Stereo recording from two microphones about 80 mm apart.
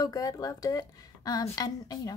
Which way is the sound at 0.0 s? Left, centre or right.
Left.